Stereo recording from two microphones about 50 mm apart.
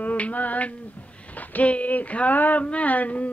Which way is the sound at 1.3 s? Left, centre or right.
Left.